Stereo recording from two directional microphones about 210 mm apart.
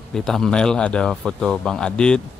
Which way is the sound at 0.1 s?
Centre (ahead or behind).